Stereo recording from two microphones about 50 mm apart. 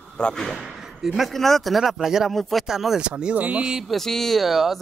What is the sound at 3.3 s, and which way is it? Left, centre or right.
Speech, right.